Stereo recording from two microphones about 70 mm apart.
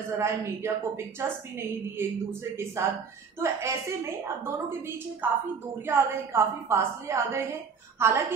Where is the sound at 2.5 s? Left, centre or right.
Right.